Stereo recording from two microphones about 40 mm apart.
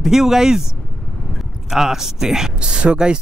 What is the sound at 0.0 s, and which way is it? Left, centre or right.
Speech, centre.